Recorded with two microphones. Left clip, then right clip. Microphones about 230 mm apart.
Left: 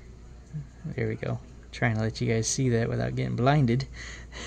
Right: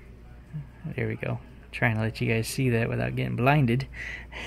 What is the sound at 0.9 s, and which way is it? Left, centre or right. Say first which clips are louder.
Speech: even; centre.